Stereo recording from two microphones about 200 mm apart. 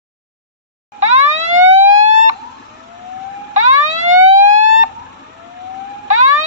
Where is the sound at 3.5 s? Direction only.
35° right (ahead or behind).